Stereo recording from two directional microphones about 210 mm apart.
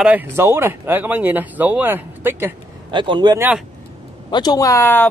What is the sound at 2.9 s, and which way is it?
Speech, 20° right (ahead or behind).